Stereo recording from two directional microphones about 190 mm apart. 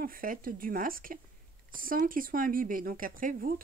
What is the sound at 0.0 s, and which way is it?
Speech, 50° right (ahead or behind).